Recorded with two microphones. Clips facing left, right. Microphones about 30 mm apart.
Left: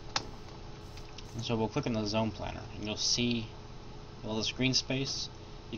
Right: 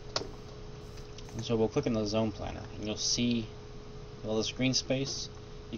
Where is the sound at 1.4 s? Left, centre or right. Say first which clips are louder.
Right 3 dB; centre.